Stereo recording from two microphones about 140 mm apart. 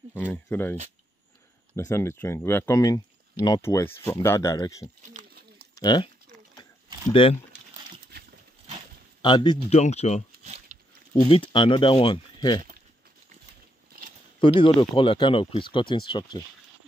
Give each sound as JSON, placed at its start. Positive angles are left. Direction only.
{"t": 0.1, "sound": "speech", "side_deg": 15}
{"t": 1.9, "sound": "speech", "side_deg": 15}
{"t": 3.6, "sound": "speech", "side_deg": 15}
{"t": 5.0, "sound": "a sound", "side_deg": -65}
{"t": 5.8, "sound": "speech", "side_deg": 30}
{"t": 7.1, "sound": "speech", "side_deg": 40}
{"t": 9.2, "sound": "speech", "side_deg": 30}
{"t": 9.7, "sound": "speech", "side_deg": 50}
{"t": 10.4, "sound": "a sound", "side_deg": -50}
{"t": 11.2, "sound": "speech", "side_deg": 40}
{"t": 14.4, "sound": "speech", "side_deg": 35}